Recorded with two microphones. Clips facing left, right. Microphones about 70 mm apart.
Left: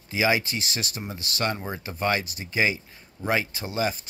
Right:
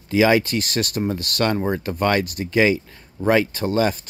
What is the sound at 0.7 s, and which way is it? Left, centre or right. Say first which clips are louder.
Speech: right 10 dB; right.